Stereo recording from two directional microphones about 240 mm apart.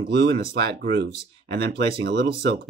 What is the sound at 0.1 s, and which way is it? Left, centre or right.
Speech, right.